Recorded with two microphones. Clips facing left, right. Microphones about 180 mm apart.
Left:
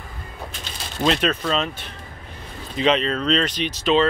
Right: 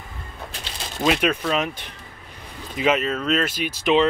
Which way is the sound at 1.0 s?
10° right (ahead or behind).